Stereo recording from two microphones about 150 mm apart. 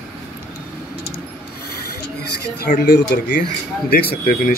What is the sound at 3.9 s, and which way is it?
Speech, 85° left.